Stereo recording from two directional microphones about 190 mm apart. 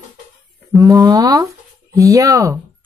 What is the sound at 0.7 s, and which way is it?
Speech, 20° right (ahead or behind).